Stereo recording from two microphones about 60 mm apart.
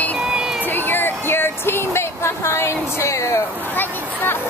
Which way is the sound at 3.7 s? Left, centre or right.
Left.